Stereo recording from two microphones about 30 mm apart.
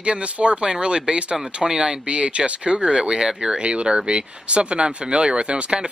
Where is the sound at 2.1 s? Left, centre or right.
Right.